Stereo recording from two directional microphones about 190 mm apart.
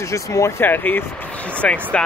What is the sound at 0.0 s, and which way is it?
Speech, 15° left (ahead or behind).